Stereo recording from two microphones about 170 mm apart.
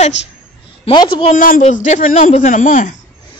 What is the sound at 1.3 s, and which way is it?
Speech, 50° left (ahead or behind).